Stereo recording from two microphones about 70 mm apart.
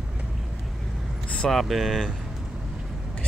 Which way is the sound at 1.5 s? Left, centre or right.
Centre.